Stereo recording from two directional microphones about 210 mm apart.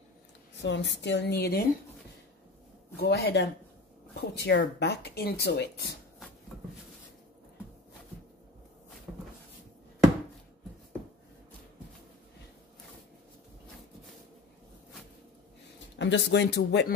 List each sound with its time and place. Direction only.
0.6 s speech: 55° left (ahead or behind)
3.0 s speech: 50° left (ahead or behind)
16.0 s speech: 55° left (ahead or behind)